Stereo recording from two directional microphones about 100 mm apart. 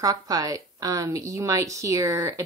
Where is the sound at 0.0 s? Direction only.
35° right (ahead or behind).